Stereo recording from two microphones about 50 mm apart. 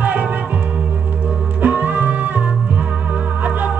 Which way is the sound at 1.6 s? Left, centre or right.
Right.